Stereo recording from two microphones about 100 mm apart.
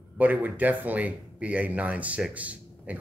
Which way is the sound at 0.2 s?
15° right (ahead or behind).